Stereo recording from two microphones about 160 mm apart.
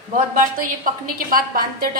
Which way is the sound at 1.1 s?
65° right (ahead or behind).